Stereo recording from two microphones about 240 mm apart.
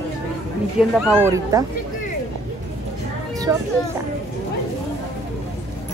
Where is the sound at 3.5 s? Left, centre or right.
Centre.